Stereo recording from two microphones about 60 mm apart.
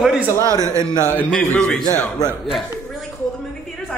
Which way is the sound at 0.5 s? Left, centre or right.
Right.